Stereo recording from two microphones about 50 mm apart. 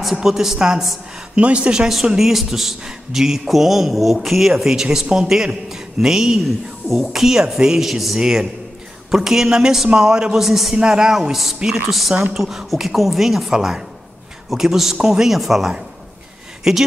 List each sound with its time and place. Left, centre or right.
0.0 s a man's voice: centre
1.3 s speech: right
2.1 s a man's voice: centre